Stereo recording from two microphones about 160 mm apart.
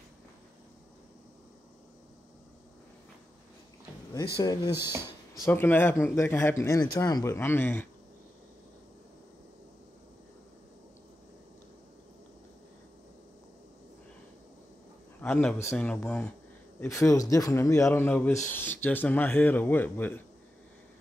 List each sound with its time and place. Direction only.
4.4 s speech: 25° left (ahead or behind)
5.5 s speech: 10° left (ahead or behind)
15.1 s a sound: 10° left (ahead or behind)
15.7 s speech: 5° left (ahead or behind)
16.8 s speech: 20° left (ahead or behind)